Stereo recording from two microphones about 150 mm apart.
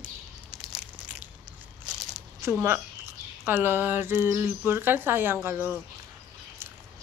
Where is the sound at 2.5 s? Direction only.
15° right (ahead or behind).